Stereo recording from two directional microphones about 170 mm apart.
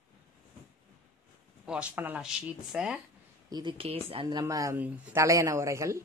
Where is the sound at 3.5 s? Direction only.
25° right (ahead or behind).